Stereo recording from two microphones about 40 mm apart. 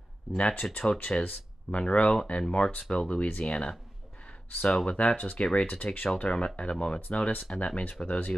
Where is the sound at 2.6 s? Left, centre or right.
Centre.